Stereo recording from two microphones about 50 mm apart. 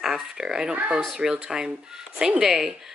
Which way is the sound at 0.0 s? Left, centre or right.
Centre.